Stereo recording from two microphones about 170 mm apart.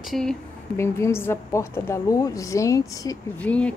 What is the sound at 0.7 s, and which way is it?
A woman's voice, 15° left (ahead or behind).